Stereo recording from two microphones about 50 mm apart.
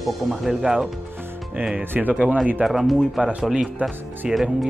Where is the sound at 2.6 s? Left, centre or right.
Centre.